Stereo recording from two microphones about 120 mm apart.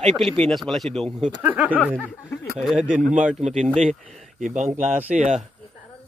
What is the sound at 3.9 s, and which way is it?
Speech, 90° right.